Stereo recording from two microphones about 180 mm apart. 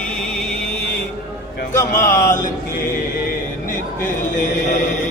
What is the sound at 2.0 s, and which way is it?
Speech, 15° left (ahead or behind).